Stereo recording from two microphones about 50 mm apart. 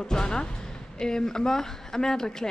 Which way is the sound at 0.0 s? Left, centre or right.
Centre.